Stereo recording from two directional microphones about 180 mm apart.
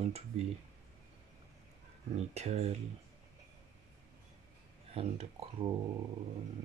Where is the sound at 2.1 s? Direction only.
35° right (ahead or behind).